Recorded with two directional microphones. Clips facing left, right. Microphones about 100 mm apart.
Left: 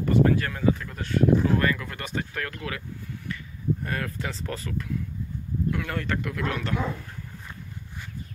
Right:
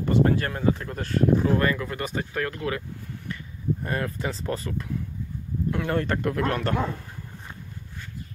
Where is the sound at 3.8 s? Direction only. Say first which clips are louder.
Right 3 dB; 25° right (ahead or behind); by 6.8 s 45° right (ahead or behind).